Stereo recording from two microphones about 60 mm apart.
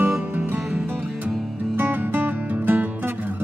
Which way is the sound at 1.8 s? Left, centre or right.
Right.